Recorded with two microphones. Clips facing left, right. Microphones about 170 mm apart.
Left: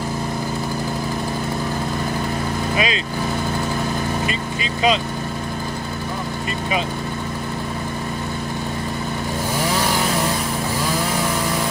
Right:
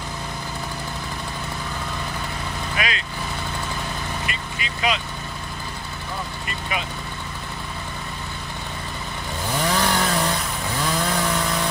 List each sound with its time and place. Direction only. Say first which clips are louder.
2.7 s speech: left 5 dB; 25° left (ahead or behind)
4.3 s vehicle: left 7 dB; 25° left (ahead or behind)